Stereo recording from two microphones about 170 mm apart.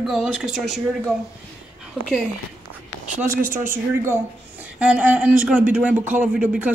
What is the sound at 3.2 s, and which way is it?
Speech, 50° right (ahead or behind).